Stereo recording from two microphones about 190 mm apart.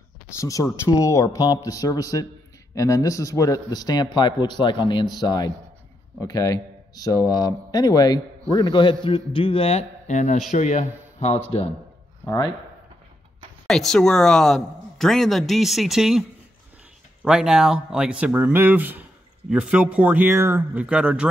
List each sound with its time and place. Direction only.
0.4 s a man's voice: 15° left (ahead or behind); by 11.4 s 35° left (ahead or behind)
13.7 s speech: centre (ahead or behind)